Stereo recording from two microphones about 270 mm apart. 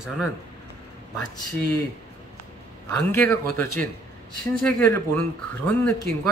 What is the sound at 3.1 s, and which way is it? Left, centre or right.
Speech, centre.